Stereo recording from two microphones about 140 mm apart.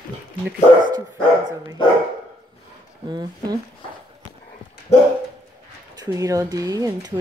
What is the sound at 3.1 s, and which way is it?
Speech, 30° right (ahead or behind).